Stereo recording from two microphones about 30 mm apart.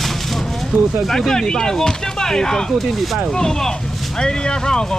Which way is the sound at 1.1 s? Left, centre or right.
Centre.